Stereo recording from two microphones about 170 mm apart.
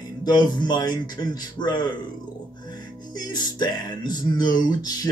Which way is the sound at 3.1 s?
25° left (ahead or behind).